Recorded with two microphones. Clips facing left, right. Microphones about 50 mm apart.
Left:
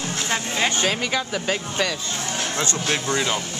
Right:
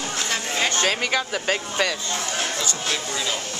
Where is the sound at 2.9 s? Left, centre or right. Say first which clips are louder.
Left 5 dB; left.